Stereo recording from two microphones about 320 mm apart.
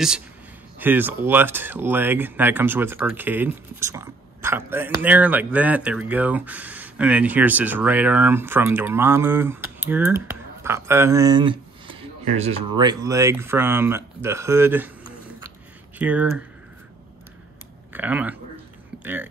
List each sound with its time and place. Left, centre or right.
0.7 s speech: centre
16.0 s speech: centre
17.9 s speech: centre